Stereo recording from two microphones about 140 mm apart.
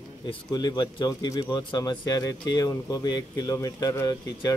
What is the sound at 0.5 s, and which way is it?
Speech, 30° left (ahead or behind).